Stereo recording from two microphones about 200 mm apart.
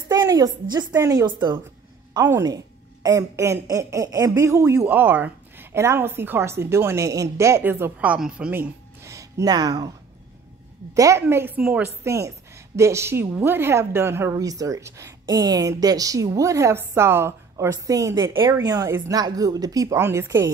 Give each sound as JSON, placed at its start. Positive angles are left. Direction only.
{"t": 0.1, "sound": "a woman's voice", "side_deg": -20}
{"t": 11.0, "sound": "a woman's voice", "side_deg": -15}